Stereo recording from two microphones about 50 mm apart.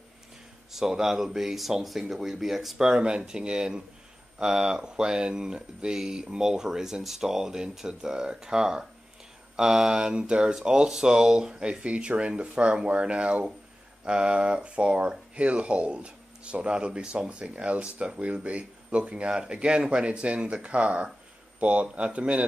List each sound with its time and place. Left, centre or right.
0.7 s speech: centre
2.9 s speech: centre